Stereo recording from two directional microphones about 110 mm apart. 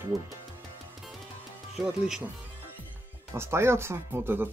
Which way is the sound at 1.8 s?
5° right (ahead or behind).